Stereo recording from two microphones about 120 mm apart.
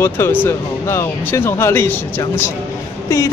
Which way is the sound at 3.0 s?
25° left (ahead or behind).